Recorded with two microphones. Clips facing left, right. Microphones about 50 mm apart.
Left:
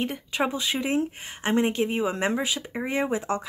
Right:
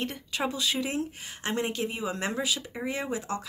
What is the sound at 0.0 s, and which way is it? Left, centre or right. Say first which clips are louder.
A woman's voice: left 4 dB; centre.